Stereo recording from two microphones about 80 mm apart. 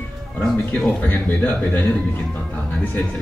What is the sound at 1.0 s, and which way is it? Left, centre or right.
Speech, left.